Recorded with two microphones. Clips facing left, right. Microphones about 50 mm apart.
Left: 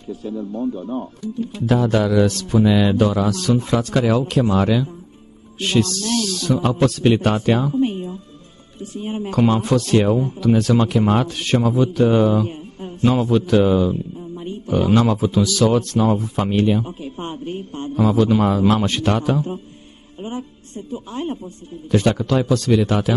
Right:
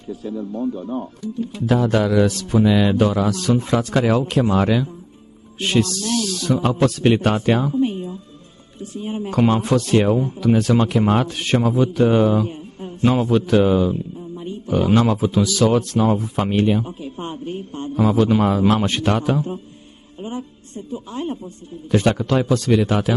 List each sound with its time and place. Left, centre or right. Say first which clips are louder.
0.5 s speech: even; centre
1.7 s speech: even; centre
2.9 s speech: even; centre
7.7 s a sound: even; left
9.0 s a man's voice: even; left
9.3 s speech: even; centre
16.8 s a man's voice: even; left
17.9 s speech: even; centre
18.4 s speech: even; centre
20.3 s speech: even; left
21.9 s speech: even; centre